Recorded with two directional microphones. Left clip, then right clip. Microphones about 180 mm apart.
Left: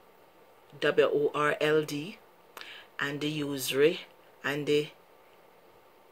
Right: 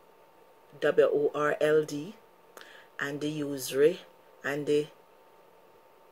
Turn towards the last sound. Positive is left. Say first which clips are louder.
# even
turn(degrees=15)  # may be behind; listen again after turning